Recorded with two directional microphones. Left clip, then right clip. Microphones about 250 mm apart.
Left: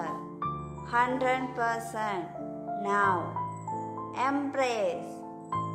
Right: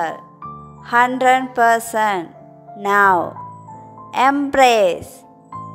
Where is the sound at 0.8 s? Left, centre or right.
Right.